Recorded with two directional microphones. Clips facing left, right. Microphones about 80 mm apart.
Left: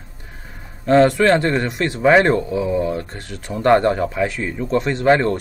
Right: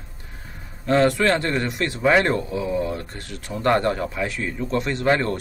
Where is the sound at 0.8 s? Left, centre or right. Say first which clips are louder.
Left 5 dB; centre.